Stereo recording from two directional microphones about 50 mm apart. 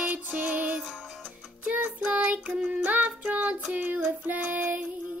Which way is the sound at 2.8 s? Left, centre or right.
Right.